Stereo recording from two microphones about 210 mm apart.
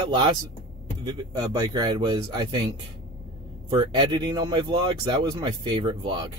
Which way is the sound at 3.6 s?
25° right (ahead or behind).